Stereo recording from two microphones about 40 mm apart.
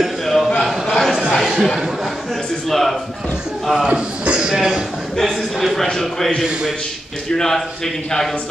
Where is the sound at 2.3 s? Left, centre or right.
Centre.